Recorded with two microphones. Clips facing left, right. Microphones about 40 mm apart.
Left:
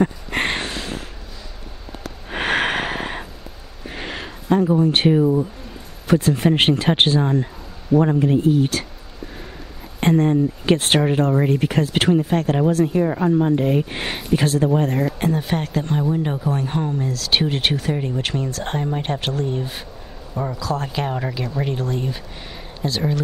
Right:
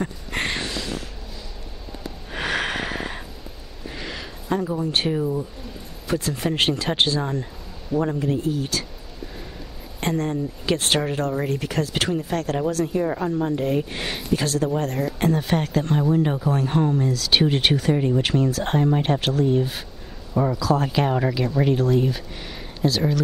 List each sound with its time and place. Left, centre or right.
0.0 s a sound: left
2.3 s snort: left
3.9 s a sound: left
4.5 s speech: left
6.0 s speech: left
7.2 s speech: left
9.9 s speech: left
15.1 s a man's voice: centre
21.3 s a man's voice: centre